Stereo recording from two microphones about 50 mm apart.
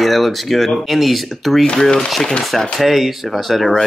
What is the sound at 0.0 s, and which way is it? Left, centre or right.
Speech, centre.